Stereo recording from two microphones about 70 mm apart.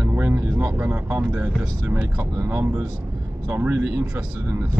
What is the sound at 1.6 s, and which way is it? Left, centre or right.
Speech, right.